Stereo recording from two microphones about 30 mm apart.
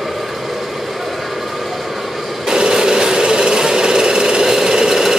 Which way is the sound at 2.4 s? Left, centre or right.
Right.